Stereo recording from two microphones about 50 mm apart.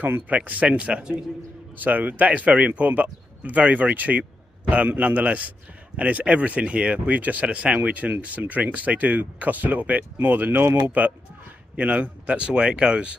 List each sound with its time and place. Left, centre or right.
0.3 s speech: right
1.8 s speech: right
4.2 s a sound: right
4.8 s speech: right
10.6 s speech: right
10.9 s speech: right